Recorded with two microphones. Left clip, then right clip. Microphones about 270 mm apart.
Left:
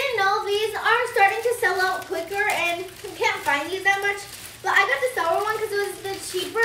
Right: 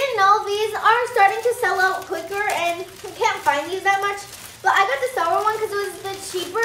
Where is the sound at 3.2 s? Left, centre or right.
Centre.